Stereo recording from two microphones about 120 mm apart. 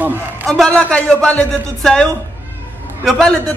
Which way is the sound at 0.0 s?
15° right (ahead or behind).